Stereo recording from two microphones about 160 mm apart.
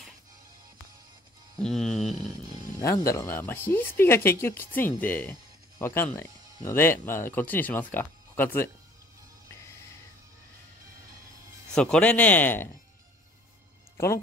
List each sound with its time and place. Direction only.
1.6 s a sound: centre (ahead or behind)
3.1 s speech: 15° left (ahead or behind)
11.7 s speech: 5° left (ahead or behind)
13.9 s speech: 15° left (ahead or behind)